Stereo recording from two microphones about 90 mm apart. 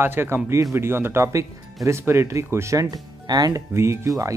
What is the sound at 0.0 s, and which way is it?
Speech, 25° right (ahead or behind).